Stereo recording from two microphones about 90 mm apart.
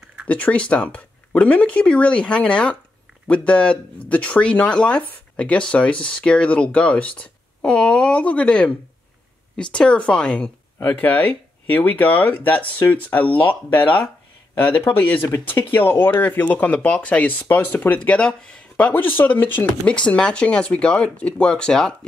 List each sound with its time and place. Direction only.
0.3 s speech: 15° left (ahead or behind)
10.8 s speech: 20° left (ahead or behind)